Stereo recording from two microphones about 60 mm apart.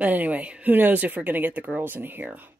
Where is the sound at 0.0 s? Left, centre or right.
Right.